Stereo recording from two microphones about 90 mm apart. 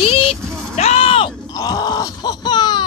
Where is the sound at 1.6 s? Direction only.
45° left (ahead or behind).